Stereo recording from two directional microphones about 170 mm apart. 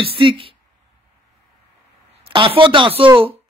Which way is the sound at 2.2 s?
30° right (ahead or behind).